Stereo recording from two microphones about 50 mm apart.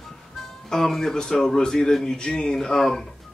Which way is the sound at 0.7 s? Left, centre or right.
Centre.